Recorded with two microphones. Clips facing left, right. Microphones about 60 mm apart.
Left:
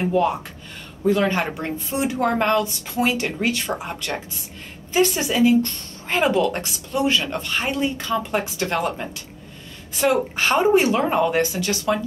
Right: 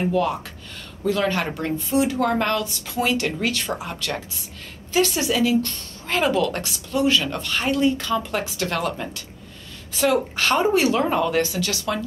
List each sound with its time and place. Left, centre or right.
0.0 s a woman's voice: centre